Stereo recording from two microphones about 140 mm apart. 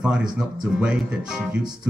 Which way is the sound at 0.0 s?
5° right (ahead or behind).